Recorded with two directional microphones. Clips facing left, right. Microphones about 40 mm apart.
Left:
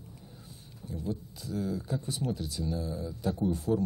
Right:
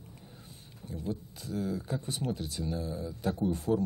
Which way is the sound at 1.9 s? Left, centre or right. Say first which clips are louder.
Left 1 dB; right.